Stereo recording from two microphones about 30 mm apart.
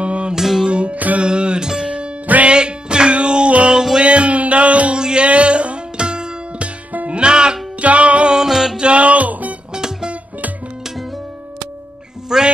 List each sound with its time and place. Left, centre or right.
0.0 s music: right
0.3 s music: centre
0.7 s music: right
0.9 s music: right
1.2 s music: right
4.9 s music: right
5.2 s a sound: right
5.9 s music: right
7.8 s music: right
8.3 s music: centre
8.7 s music: right
9.8 s music: right
12.3 s music: centre